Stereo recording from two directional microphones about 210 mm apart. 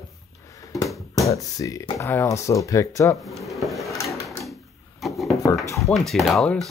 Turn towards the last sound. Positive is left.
turn(degrees=0)  # may be behind; listen again after turning